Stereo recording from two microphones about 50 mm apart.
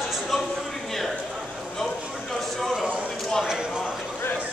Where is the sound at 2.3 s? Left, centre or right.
Centre.